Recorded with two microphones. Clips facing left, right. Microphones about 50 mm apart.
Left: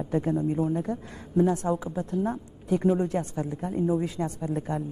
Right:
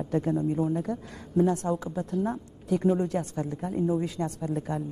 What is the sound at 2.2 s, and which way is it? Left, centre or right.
A woman's voice, centre.